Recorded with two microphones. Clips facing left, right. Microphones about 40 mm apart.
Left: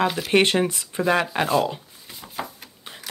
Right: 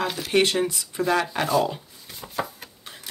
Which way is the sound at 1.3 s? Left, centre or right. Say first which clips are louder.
Left 1 dB; centre.